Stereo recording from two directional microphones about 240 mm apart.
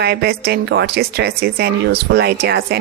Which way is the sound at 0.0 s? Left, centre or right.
Right.